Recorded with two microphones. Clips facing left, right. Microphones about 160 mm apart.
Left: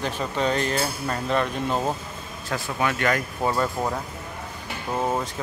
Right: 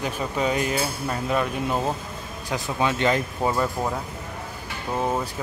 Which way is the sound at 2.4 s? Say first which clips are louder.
Right 1 dB; 15° right (ahead or behind).